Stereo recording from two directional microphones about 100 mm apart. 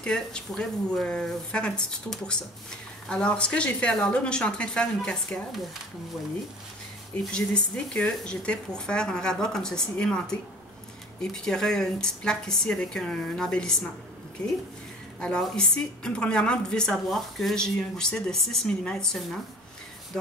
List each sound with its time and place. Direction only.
0.0 s speech: 10° left (ahead or behind)
7.2 s speech: 10° left (ahead or behind)
11.3 s a woman's voice: 5° left (ahead or behind)